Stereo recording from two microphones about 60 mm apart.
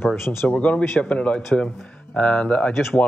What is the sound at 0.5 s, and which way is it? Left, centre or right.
Speech, left.